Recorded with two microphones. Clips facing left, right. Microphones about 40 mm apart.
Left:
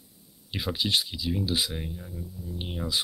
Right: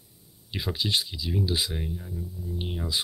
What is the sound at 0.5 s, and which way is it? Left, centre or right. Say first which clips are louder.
Speech: left 1 dB; centre.